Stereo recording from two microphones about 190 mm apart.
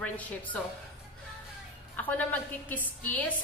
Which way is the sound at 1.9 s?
10° left (ahead or behind).